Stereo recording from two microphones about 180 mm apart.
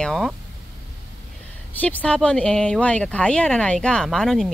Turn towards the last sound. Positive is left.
turn(degrees=0)  # may be behind; listen again after turning